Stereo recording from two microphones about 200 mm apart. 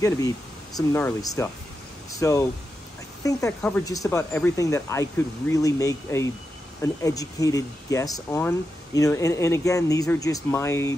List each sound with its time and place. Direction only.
0.7 s speech: 15° left (ahead or behind)